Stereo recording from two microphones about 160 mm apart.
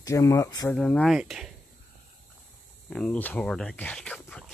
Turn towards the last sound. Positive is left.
turn(degrees=5)  # may be behind; listen again after turning